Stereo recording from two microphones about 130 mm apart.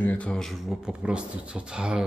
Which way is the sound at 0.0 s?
10° left (ahead or behind).